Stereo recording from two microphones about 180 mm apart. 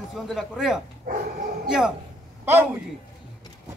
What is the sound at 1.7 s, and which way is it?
Speech, centre (ahead or behind).